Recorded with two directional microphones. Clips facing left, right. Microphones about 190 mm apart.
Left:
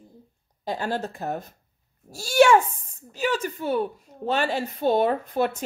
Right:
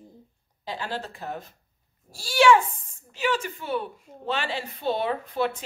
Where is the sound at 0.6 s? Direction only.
45° left (ahead or behind).